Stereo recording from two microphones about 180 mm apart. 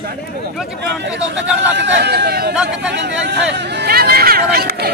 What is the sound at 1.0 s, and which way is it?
Chatter, 75° right (ahead or behind).